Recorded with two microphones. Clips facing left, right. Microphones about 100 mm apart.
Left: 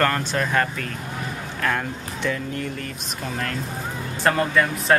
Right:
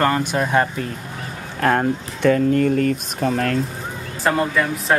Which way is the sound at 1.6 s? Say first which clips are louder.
Right 8 dB; 45° right (ahead or behind).